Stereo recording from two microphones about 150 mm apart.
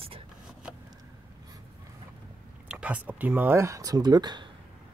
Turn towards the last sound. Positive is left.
turn(degrees=-30)  # may be behind; listen again after turning